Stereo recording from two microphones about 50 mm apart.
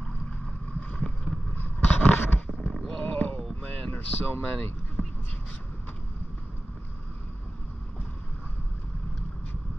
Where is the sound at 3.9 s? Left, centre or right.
Left.